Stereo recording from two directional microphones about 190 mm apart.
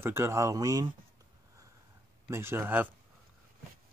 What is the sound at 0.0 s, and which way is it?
Speech, 15° right (ahead or behind).